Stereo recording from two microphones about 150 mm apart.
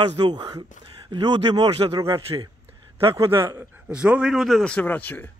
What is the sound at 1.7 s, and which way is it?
Speech, 40° right (ahead or behind).